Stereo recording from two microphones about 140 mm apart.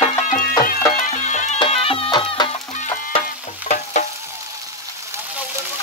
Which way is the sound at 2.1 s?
30° left (ahead or behind).